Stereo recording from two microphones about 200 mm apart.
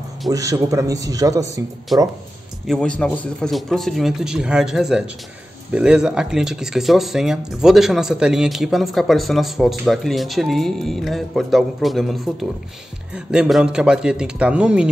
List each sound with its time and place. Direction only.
0.3 s a man's voice: 15° right (ahead or behind)
1.9 s speech: centre (ahead or behind)